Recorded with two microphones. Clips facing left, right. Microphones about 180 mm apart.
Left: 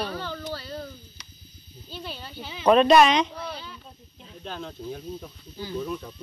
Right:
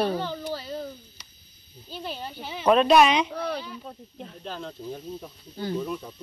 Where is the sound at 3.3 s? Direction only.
60° right (ahead or behind).